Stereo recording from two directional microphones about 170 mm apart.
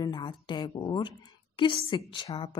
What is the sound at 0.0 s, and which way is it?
A woman's voice, 25° left (ahead or behind).